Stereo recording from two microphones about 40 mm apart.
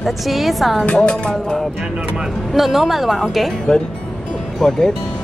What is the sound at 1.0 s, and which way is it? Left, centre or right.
Speech, left.